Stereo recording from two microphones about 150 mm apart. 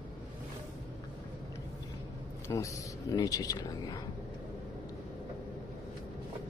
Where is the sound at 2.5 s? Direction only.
20° left (ahead or behind).